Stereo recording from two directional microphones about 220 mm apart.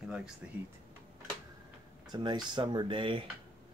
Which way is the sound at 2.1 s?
20° right (ahead or behind).